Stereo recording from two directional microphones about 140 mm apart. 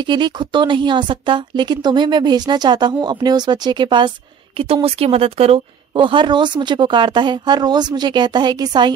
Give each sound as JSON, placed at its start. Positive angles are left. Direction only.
{"t": 0.0, "sound": "a woman's voice", "side_deg": -35}